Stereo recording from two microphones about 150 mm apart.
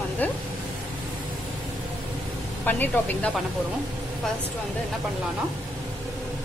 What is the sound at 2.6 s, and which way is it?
Speech, 10° left (ahead or behind).